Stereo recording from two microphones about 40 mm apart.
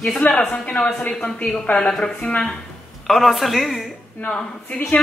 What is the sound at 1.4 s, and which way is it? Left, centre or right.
Speech, left.